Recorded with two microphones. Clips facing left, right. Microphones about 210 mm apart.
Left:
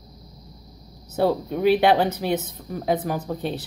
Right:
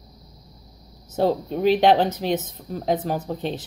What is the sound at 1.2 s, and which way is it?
Speech, 10° left (ahead or behind).